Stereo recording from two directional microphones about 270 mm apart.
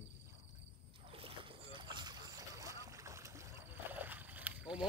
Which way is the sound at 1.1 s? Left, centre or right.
Centre.